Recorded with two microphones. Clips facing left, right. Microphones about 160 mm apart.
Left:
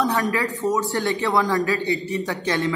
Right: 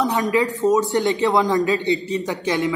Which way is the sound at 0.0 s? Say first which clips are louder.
Right 3 dB; 20° right (ahead or behind).